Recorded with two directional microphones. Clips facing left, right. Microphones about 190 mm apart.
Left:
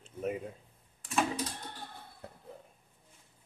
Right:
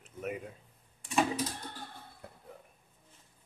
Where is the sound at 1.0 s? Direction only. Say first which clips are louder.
Right 2 dB; centre (ahead or behind).